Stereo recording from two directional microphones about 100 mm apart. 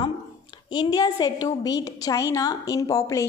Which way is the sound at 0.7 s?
40° left (ahead or behind).